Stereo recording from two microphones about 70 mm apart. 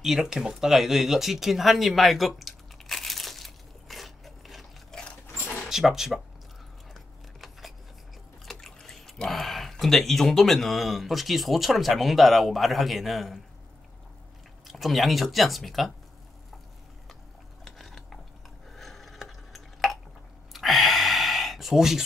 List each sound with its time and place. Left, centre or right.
0.0 s a sound: centre
4.9 s sewing machine: centre
5.3 s dog: left
5.7 s speech: centre
6.9 s a sound: centre
8.5 s speech: centre
14.7 s speech: centre
17.6 s mechanisms: centre
18.7 s a sound: centre
20.5 s gasp: centre